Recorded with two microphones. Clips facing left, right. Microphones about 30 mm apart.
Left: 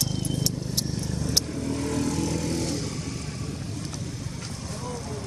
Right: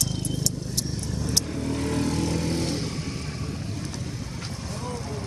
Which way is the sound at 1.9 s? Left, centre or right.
Right.